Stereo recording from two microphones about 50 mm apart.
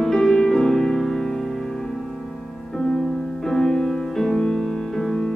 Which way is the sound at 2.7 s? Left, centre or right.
Centre.